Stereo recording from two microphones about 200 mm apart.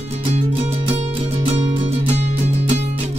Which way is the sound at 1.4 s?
30° right (ahead or behind).